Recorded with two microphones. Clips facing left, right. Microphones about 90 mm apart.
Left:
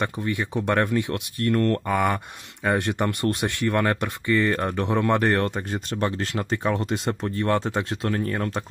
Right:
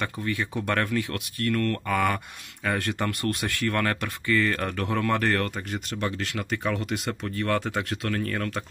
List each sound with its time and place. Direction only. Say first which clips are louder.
0.0 s speech: left 3 dB; 20° left (ahead or behind)